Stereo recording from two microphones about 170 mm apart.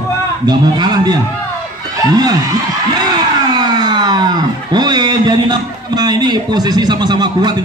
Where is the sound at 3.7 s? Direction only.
25° right (ahead or behind).